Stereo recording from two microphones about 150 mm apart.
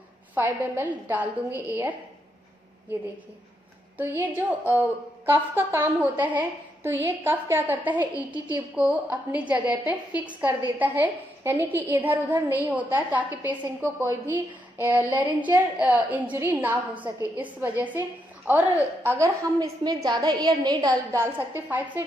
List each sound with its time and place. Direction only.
0.3 s a woman's voice: 10° right (ahead or behind)
4.2 s a woman's voice: 10° right (ahead or behind)